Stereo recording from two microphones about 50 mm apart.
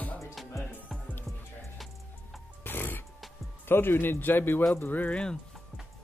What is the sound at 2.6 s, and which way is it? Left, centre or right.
Music, left.